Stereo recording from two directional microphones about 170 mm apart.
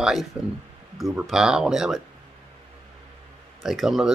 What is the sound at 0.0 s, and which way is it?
Speech, centre (ahead or behind).